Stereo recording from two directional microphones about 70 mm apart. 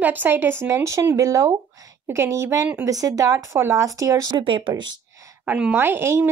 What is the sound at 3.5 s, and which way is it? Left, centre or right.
Speech, right.